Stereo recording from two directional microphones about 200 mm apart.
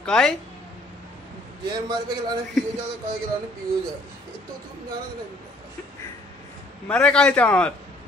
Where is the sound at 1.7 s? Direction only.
20° right (ahead or behind).